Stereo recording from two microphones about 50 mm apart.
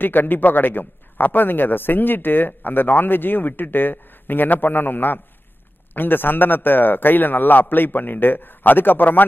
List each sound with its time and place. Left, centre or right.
0.0 s a man's voice: left